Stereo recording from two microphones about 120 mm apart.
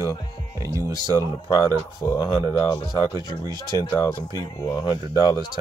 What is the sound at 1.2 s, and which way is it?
Speech, 30° left (ahead or behind).